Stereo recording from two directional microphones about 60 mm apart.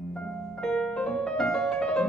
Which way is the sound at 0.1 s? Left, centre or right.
Centre.